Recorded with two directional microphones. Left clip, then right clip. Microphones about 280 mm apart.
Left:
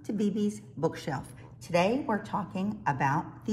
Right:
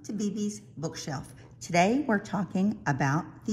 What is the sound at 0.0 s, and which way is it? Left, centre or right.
A woman's voice, centre.